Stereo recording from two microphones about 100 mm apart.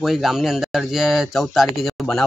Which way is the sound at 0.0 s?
5° right (ahead or behind).